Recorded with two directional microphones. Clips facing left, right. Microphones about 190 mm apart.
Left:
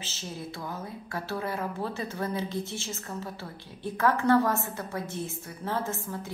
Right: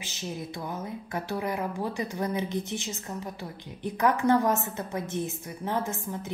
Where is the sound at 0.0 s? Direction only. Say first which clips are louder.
Right 3 dB; 15° right (ahead or behind).